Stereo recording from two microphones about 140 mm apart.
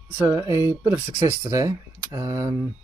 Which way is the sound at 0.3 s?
20° right (ahead or behind).